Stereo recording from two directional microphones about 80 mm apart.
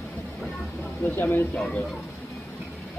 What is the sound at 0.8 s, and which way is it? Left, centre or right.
Speech, left.